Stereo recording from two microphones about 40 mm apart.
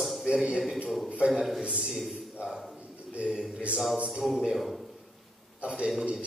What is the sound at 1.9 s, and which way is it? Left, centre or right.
Speech, centre.